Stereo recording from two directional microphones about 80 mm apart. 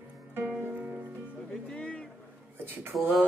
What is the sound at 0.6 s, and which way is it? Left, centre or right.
Music, right.